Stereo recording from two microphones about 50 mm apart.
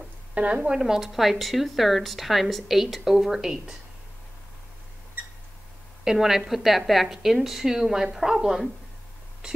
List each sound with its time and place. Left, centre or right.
0.3 s a woman's voice: right
0.7 s a woman's voice: centre
6.0 s a woman's voice: centre